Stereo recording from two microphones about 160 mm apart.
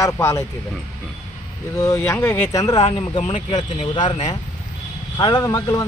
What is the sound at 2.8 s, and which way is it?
Speech, 40° left (ahead or behind).